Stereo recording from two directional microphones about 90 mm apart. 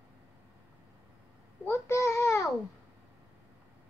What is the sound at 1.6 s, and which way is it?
Child singing, 30° left (ahead or behind).